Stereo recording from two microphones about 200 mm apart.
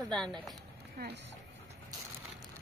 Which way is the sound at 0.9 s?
50° right (ahead or behind).